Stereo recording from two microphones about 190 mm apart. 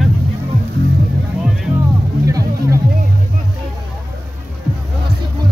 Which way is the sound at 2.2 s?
15° right (ahead or behind).